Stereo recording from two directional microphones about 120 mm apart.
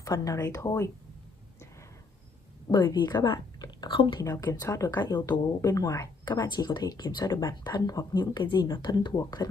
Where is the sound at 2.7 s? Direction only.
35° left (ahead or behind).